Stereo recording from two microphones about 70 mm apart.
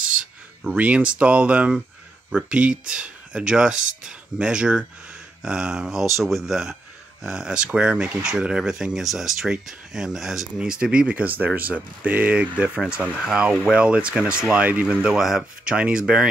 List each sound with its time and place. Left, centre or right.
0.7 s speech: centre
13.2 s speech: centre
15.1 s speech: centre